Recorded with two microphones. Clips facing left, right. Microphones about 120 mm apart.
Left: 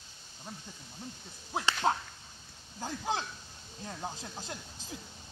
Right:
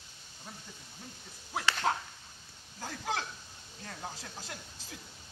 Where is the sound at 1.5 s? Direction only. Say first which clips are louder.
Left 2 dB; 20° left (ahead or behind).